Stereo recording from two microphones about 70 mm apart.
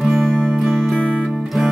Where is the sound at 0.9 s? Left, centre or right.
Centre.